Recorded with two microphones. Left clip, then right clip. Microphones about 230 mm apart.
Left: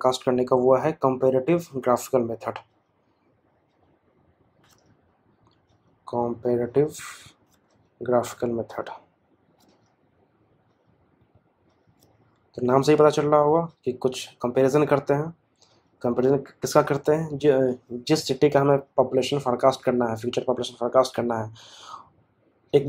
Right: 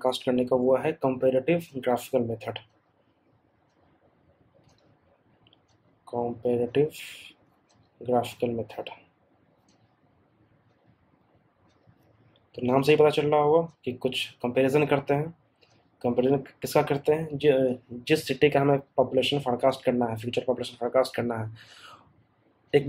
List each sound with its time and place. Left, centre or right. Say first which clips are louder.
0.0 s speech: left 4 dB; centre
6.0 s speech: left 3 dB; left
8.0 s speech: left 3 dB; left
12.6 s speech: left 3 dB; left